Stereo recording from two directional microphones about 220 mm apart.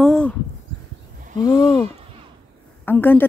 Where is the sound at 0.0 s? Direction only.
Centre (ahead or behind).